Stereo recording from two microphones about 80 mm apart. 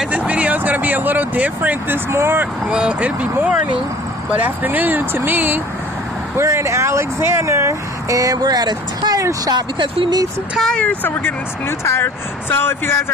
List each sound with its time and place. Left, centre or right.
0.0 s speech: centre
2.0 s speech: right
2.6 s speech: centre
6.3 s speech: right
9.5 s speech: right
10.6 s speech: centre; by 13.0 s left